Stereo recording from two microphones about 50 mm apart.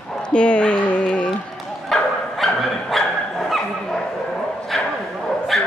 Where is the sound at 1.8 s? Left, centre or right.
Centre.